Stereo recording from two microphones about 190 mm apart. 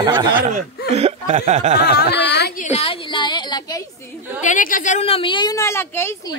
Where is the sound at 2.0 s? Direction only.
60° left (ahead or behind).